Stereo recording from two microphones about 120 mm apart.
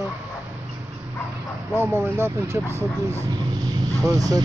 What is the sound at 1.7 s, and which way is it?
Speech, 20° right (ahead or behind).